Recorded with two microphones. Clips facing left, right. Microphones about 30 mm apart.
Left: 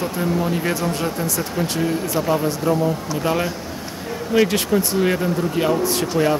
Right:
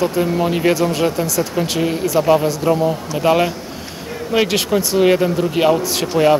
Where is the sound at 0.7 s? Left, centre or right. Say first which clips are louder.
Right 6 dB; right.